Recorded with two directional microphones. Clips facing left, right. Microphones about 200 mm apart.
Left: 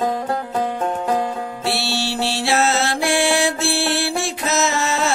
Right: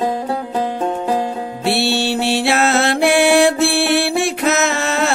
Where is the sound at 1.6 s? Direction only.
60° right (ahead or behind).